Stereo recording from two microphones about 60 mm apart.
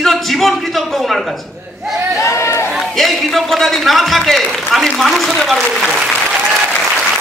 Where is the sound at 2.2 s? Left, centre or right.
Left.